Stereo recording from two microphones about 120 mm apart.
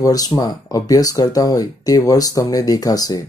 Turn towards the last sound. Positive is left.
turn(degrees=30)  # may be behind; listen again after turning